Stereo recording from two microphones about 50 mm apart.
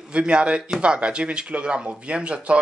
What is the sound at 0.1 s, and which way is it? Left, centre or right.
Speech, right.